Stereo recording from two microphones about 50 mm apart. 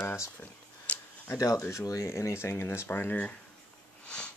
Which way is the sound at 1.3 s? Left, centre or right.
Left.